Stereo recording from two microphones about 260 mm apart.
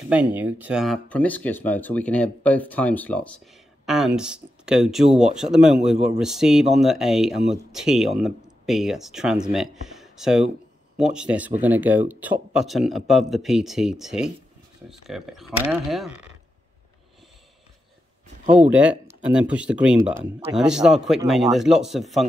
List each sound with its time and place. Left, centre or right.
0.1 s speech: centre
18.4 s speech: right
18.7 s speech: centre